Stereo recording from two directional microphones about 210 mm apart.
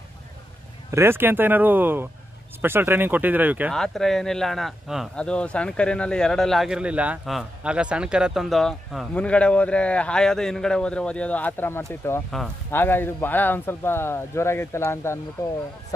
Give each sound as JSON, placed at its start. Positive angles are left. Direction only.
{"t": 0.9, "sound": "speech", "side_deg": -10}